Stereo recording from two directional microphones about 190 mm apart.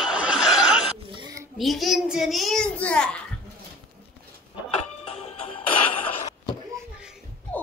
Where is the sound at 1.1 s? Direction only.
20° right (ahead or behind).